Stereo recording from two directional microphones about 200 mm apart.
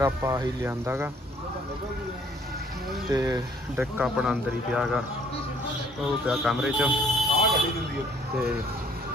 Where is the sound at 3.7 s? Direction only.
5° right (ahead or behind).